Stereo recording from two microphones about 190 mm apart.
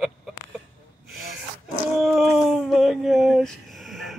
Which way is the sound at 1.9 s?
Centre (ahead or behind).